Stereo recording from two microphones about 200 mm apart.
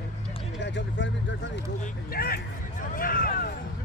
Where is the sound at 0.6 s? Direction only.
60° left (ahead or behind).